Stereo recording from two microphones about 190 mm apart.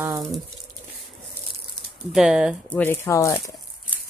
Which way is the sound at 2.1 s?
5° right (ahead or behind).